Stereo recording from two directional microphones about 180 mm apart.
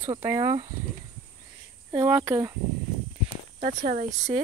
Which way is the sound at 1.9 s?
15° right (ahead or behind).